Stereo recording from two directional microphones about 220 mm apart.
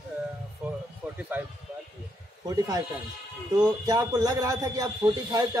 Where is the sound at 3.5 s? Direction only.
15° right (ahead or behind).